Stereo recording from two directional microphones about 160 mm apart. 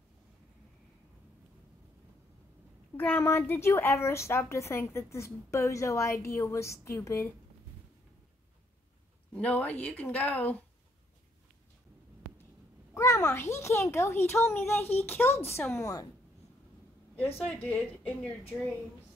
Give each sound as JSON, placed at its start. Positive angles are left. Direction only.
{"t": 3.0, "sound": "a woman's voice", "side_deg": 10}
{"t": 9.3, "sound": "a woman's voice", "side_deg": 10}
{"t": 12.9, "sound": "a woman's voice", "side_deg": 20}
{"t": 17.4, "sound": "a woman's voice", "side_deg": 10}